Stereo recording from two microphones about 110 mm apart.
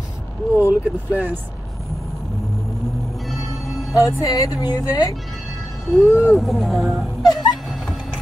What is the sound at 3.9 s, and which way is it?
Speech, 30° left (ahead or behind).